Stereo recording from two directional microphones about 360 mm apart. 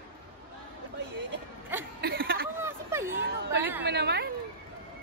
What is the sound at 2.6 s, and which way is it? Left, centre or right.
Speech, centre.